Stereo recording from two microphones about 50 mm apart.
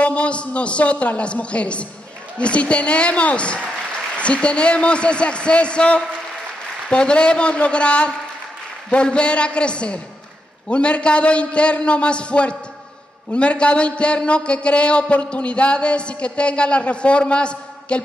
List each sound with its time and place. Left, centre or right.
0.0 s a man's voice: left